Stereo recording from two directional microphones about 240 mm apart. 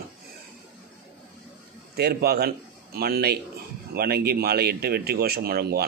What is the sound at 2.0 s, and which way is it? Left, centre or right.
A man's voice, right.